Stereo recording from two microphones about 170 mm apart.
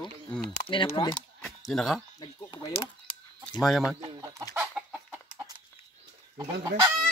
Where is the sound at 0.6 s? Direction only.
30° left (ahead or behind).